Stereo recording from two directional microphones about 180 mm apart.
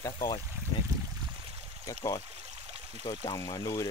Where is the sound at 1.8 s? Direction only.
20° left (ahead or behind).